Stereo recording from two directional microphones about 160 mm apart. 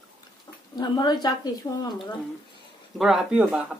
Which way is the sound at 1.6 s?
15° left (ahead or behind).